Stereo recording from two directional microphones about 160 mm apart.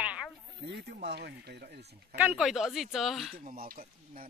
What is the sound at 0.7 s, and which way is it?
Speech, 90° right.